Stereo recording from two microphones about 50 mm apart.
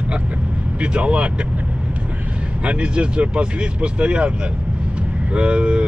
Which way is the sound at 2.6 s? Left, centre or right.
Right.